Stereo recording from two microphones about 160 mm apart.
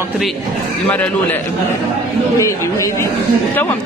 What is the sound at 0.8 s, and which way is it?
A man's voice, 10° left (ahead or behind).